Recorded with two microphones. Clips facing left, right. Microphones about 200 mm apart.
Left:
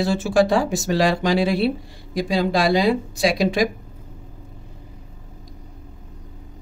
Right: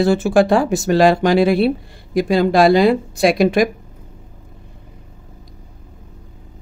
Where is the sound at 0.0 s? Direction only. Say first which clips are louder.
Right 4 dB; 55° right (ahead or behind).